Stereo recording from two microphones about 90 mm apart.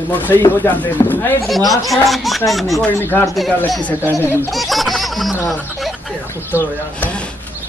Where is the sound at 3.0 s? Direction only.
25° left (ahead or behind).